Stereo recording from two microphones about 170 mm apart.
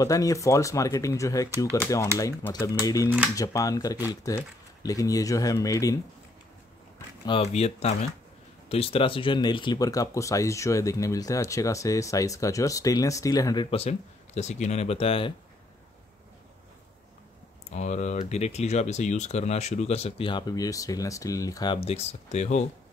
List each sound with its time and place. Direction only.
0.0 s speech: 20° left (ahead or behind)
7.4 s speech: 40° left (ahead or behind); by 13.7 s 20° left (ahead or behind)
13.7 s speech: 35° left (ahead or behind)
17.6 s speech: 45° left (ahead or behind); by 21.7 s 20° left (ahead or behind)
21.7 s speech: 40° left (ahead or behind)